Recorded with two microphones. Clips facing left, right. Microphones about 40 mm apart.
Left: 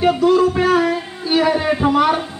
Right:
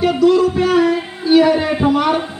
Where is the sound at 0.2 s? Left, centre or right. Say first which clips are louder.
Right 1 dB; left.